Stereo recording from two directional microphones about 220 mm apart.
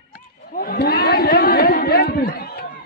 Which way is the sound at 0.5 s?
45° left (ahead or behind).